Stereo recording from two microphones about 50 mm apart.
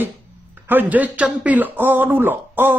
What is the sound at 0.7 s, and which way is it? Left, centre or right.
A man's voice, right.